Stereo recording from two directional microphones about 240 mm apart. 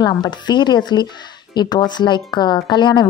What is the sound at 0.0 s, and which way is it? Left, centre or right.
A woman's voice, centre.